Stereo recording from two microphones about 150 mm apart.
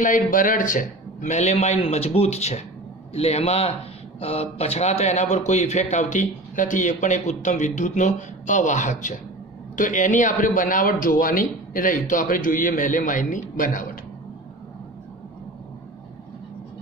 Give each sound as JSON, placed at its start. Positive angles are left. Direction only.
{"t": 0.0, "sound": "a man's voice", "side_deg": 60}